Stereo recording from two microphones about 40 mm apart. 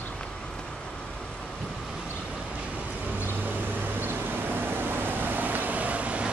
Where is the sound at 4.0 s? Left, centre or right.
Right.